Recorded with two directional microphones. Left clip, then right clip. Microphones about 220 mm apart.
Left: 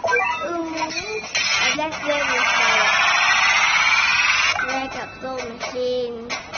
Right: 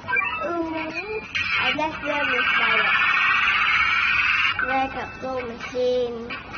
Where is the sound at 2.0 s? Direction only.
55° left (ahead or behind).